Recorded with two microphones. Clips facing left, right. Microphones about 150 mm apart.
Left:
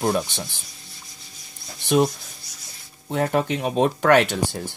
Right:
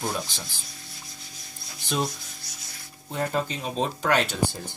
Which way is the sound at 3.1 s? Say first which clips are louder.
Left 6 dB; 70° left (ahead or behind).